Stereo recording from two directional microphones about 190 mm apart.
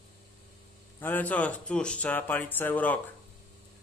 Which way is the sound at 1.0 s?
10° left (ahead or behind).